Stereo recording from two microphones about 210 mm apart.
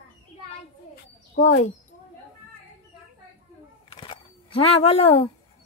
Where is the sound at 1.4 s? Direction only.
45° left (ahead or behind).